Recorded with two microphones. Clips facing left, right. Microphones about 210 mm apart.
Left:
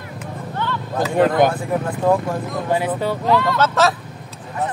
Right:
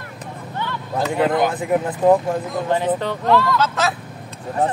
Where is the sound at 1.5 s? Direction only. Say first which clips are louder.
Right 2 dB; 20° right (ahead or behind).